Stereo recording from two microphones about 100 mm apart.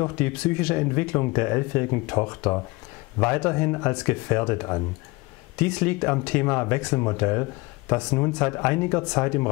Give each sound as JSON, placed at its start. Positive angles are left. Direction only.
{"t": 0.2, "sound": "speech", "side_deg": 15}
{"t": 7.9, "sound": "speech", "side_deg": 10}
{"t": 8.4, "sound": "speech", "side_deg": 20}